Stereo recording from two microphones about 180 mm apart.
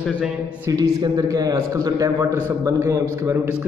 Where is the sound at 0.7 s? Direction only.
20° right (ahead or behind).